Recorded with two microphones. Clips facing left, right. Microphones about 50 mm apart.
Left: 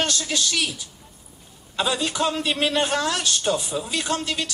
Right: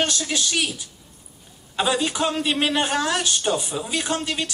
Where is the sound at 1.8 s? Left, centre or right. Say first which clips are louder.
Right 1 dB; centre.